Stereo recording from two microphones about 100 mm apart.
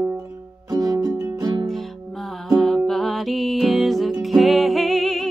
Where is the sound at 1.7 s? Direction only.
Centre (ahead or behind).